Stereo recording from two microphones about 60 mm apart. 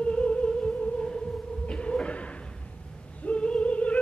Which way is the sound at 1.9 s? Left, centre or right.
Centre.